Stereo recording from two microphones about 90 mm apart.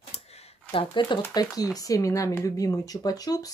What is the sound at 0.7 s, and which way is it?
Speech, 65° left (ahead or behind).